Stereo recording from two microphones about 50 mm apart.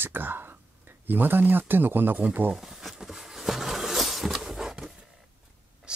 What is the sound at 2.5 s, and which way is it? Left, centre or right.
Speech, centre.